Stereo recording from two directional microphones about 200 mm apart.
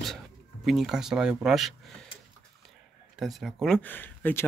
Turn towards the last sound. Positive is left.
turn(degrees=10)  # may be behind; listen again after turning